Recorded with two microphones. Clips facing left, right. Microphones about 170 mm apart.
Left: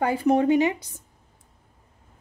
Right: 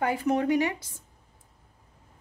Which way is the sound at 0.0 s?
30° left (ahead or behind).